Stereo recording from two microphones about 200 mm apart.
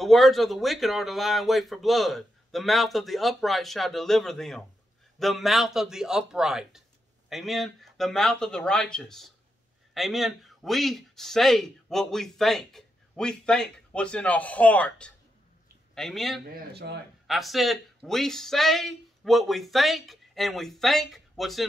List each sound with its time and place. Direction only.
0.0 s a man's voice: centre (ahead or behind)
16.4 s speech: 50° right (ahead or behind)
17.3 s speech: centre (ahead or behind)